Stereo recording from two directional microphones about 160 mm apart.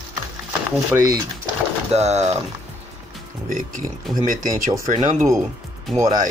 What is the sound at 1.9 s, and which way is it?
Speech, 45° right (ahead or behind).